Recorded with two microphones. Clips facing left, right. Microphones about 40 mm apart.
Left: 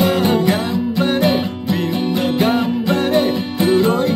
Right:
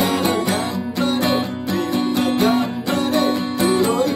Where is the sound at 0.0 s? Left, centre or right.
Left.